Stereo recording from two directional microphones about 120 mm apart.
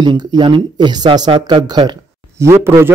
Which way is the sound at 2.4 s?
25° right (ahead or behind).